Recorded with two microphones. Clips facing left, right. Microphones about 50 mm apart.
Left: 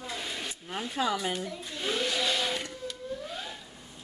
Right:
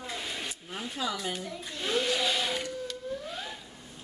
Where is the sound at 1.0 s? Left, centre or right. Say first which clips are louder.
Left 4 dB; left.